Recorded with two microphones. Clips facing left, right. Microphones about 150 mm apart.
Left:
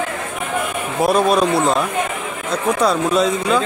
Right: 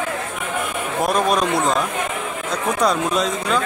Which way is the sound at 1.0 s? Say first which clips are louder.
Left 4 dB; 5° left (ahead or behind).